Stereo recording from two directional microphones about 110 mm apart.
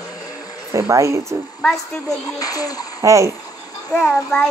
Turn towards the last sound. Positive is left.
turn(degrees=5)  # may be behind; listen again after turning